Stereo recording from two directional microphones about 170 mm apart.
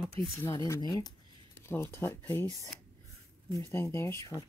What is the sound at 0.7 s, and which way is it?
Speech, 20° left (ahead or behind).